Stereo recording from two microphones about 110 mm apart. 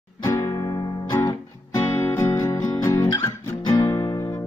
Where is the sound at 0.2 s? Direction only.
35° left (ahead or behind).